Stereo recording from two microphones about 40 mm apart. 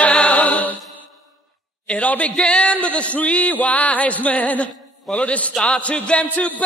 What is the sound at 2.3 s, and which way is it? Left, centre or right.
Speech, left.